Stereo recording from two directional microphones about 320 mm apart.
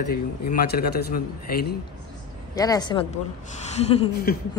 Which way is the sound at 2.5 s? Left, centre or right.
Centre.